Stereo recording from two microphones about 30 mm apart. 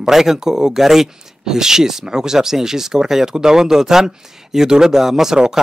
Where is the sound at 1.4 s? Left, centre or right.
Centre.